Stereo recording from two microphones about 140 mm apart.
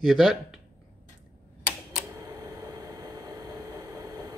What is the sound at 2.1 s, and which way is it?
Vehicle, 25° right (ahead or behind).